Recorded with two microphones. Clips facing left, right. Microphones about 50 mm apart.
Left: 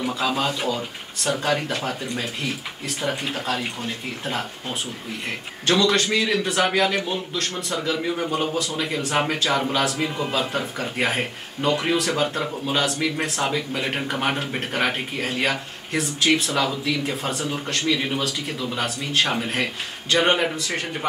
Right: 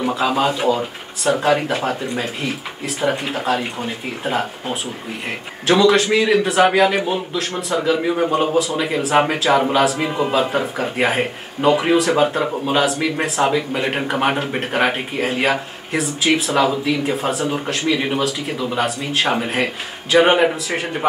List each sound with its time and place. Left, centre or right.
0.1 s speech: centre
12.4 s speech: right
12.7 s speech: centre